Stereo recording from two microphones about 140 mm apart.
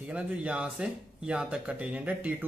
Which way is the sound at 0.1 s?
10° right (ahead or behind).